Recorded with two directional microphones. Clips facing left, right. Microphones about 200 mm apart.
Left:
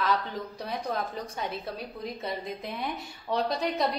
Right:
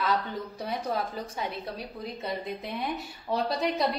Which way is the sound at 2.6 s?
Centre (ahead or behind).